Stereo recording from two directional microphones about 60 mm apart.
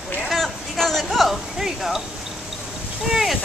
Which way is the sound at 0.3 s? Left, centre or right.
Centre.